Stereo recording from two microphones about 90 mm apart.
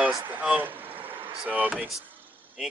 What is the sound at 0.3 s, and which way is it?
Speech, 20° right (ahead or behind).